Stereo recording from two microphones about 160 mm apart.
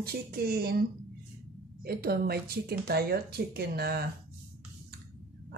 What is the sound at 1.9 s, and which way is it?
A woman's voice, 70° right (ahead or behind).